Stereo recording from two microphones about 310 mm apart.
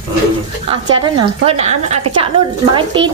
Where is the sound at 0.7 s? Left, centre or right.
Centre.